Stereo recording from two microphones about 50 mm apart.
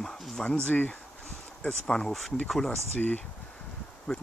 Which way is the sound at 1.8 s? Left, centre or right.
Centre.